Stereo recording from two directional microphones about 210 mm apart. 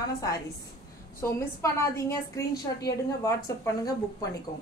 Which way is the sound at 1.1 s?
10° left (ahead or behind).